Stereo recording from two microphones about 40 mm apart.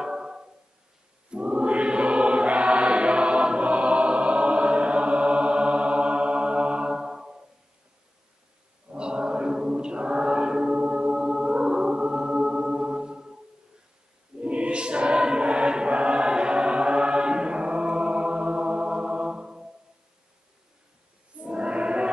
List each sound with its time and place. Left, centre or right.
0.0 s music: centre
1.3 s choir: right
8.8 s chant: right
14.4 s choir: right
21.4 s music: right